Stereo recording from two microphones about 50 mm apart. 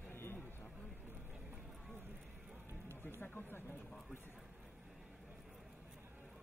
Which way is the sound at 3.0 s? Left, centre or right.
Left.